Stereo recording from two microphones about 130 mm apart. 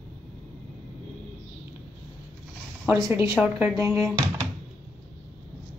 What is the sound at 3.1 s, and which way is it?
Speech, 20° right (ahead or behind).